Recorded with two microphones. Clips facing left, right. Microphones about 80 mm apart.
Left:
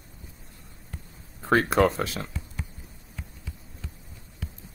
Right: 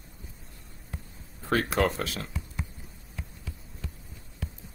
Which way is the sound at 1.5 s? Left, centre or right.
Left.